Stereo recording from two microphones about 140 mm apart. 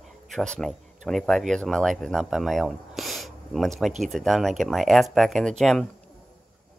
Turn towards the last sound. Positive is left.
turn(degrees=5)  # may be behind; listen again after turning